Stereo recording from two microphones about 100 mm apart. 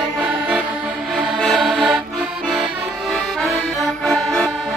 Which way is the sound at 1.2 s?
Centre (ahead or behind).